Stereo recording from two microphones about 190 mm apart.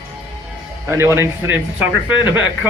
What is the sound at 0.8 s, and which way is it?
A man's voice, 15° right (ahead or behind).